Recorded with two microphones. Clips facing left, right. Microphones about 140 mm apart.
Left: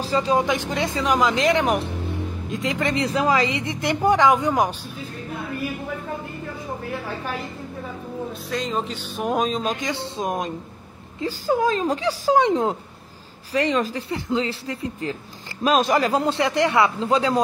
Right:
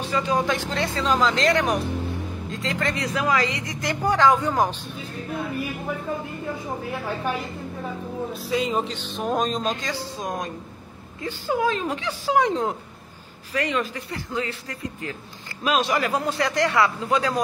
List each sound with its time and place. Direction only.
0.0 s speech: 30° left (ahead or behind)
0.4 s speech: 15° left (ahead or behind)
8.3 s speech: 5° right (ahead or behind)
8.9 s speech: 10° left (ahead or behind)
9.8 s speech: 20° left (ahead or behind)
11.1 s speech: 40° left (ahead or behind)
12.4 s speech: 25° left (ahead or behind)
13.5 s speech: 35° left (ahead or behind)
15.6 s speech: 45° left (ahead or behind)
16.1 s speech: 25° left (ahead or behind)